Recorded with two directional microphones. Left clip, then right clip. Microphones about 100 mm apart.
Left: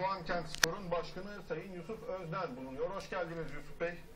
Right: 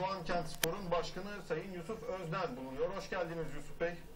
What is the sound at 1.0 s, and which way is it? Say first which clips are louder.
A man's voice: right 2 dB; 15° right (ahead or behind).